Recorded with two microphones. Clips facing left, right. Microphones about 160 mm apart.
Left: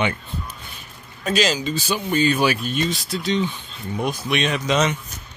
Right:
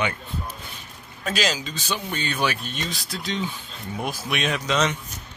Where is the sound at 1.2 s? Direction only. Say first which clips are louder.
Left 5 dB; centre (ahead or behind).